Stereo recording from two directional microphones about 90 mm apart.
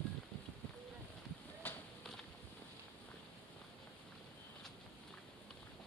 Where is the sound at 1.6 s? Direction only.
25° left (ahead or behind).